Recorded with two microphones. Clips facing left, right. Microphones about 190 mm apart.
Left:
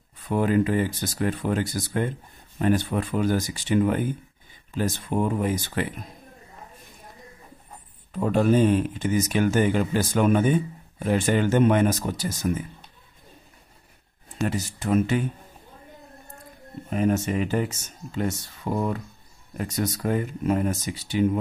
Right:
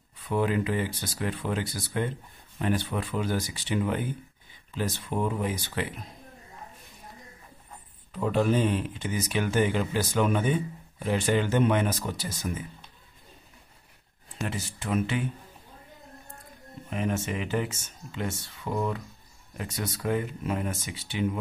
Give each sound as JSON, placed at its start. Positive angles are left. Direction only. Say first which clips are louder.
{"t": 0.3, "sound": "speech", "louder": "left 5 dB", "side_deg": 45}
{"t": 8.1, "sound": "speech", "louder": "left 4 dB", "side_deg": 45}
{"t": 14.4, "sound": "speech", "louder": "left 7 dB", "side_deg": 40}
{"t": 16.9, "sound": "speech", "louder": "left 6 dB", "side_deg": 40}